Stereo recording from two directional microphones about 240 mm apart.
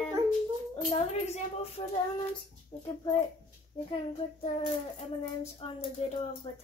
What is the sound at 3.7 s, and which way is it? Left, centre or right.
Speech, left.